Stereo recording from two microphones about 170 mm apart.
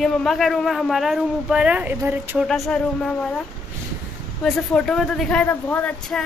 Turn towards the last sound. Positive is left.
turn(degrees=10)  # may be behind; listen again after turning